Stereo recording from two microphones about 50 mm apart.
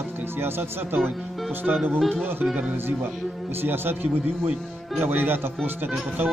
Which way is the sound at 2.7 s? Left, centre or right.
Right.